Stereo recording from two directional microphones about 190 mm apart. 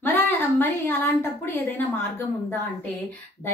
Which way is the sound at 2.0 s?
10° left (ahead or behind).